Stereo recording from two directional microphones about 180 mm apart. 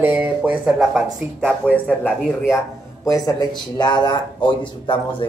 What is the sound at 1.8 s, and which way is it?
Speech, 10° left (ahead or behind).